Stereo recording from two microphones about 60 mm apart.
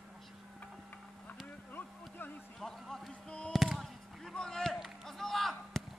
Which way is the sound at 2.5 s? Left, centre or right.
Centre.